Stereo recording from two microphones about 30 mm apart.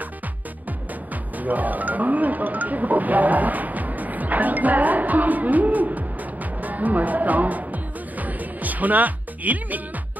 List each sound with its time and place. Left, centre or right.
1.4 s music: right